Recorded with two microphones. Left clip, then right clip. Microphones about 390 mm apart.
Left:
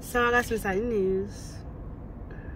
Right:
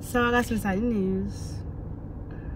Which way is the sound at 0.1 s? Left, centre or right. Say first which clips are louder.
Even; centre.